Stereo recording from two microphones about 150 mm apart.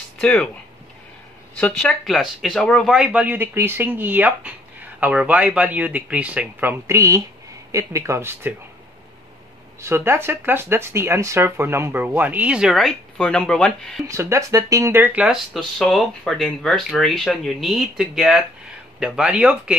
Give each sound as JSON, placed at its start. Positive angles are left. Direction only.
{"t": 0.2, "sound": "speech", "side_deg": 5}
{"t": 1.6, "sound": "speech", "side_deg": 10}
{"t": 9.8, "sound": "speech", "side_deg": -20}
{"t": 14.0, "sound": "speech", "side_deg": -20}